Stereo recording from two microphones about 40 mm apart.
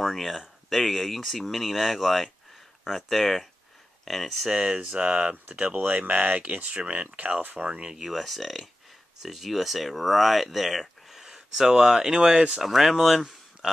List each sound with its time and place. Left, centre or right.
0.0 s speech: centre
4.6 s speech: right
5.8 s speech: right
7.9 s speech: centre
12.6 s speech: centre